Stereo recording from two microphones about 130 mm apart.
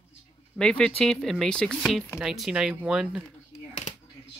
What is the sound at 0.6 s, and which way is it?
Speech, 5° left (ahead or behind).